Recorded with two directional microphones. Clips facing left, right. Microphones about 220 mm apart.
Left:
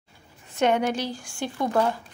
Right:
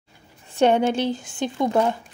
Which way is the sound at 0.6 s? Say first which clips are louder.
Right 4 dB; 30° right (ahead or behind).